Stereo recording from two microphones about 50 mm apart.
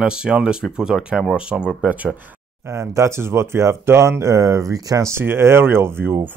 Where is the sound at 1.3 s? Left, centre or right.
Centre.